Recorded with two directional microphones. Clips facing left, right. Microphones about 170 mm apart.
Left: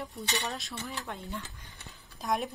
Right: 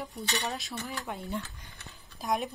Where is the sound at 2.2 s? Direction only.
Centre (ahead or behind).